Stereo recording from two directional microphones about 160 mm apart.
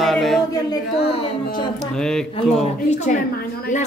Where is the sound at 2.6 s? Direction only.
45° left (ahead or behind).